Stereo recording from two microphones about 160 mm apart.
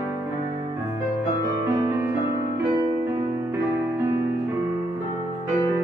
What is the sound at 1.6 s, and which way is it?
Music, 10° right (ahead or behind).